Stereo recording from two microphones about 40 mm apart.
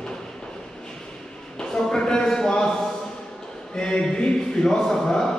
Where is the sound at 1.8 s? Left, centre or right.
Centre.